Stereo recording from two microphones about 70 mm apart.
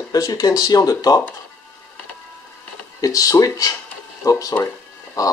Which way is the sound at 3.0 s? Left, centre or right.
Left.